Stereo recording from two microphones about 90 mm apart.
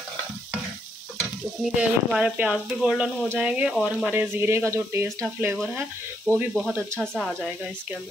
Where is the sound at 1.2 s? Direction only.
5° right (ahead or behind).